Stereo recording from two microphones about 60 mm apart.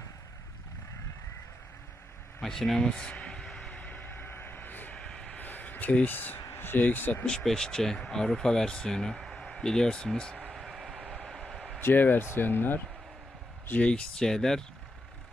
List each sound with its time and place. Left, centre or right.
2.4 s a sound: centre; by 4.9 s left
4.9 s vehicle: centre
5.4 s a sound: left
6.5 s speech: left
7.2 s speech: centre
10.5 s vehicle: centre
11.8 s speech: left
13.7 s speech: centre